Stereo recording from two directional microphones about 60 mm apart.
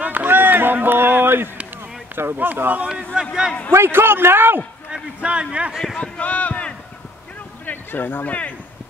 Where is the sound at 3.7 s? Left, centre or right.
Right.